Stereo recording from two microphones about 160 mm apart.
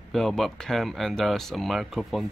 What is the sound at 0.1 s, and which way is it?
Speech, centre (ahead or behind).